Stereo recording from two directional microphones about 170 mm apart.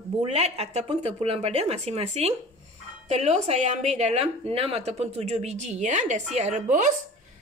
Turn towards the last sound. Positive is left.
turn(degrees=-45)  # may be behind; listen again after turning